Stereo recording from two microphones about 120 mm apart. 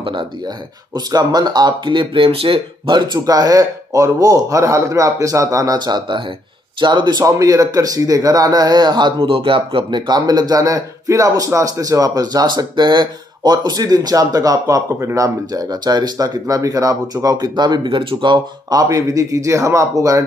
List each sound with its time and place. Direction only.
0.0 s speech: 40° right (ahead or behind)